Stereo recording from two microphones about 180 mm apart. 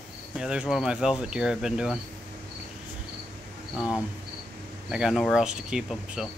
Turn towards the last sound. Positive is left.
turn(degrees=-5)  # may be behind; listen again after turning